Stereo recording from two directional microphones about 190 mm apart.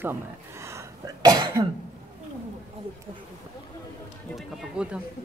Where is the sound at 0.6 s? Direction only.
15° right (ahead or behind).